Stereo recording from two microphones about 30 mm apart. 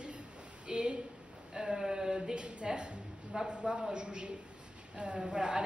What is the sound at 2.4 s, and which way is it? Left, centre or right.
A woman's voice, right.